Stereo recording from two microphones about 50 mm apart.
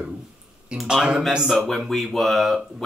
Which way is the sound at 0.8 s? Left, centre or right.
Centre.